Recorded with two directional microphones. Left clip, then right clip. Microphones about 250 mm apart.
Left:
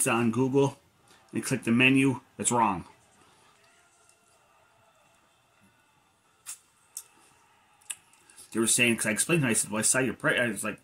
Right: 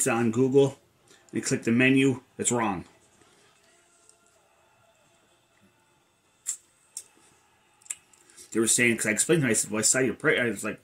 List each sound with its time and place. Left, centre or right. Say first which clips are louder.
0.0 s speech: right 2 dB; centre
8.5 s speech: right 2 dB; centre